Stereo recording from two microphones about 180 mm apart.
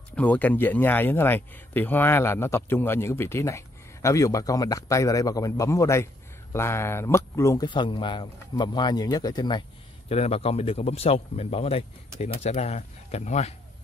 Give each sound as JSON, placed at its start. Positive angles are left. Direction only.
{"t": 0.1, "sound": "speech", "side_deg": 10}